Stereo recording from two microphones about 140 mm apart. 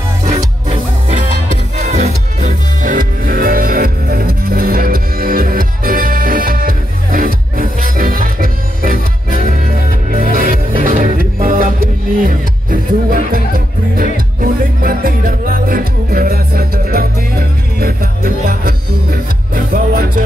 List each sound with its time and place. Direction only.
0.7 s music: 40° right (ahead or behind)
2.8 s music: 75° right (ahead or behind); by 9.0 s 90° right
10.1 s music: 85° right